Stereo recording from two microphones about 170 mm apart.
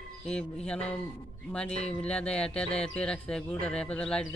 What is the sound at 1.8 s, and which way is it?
Speech, 5° left (ahead or behind).